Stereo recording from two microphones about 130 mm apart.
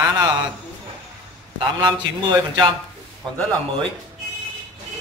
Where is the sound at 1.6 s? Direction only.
35° right (ahead or behind).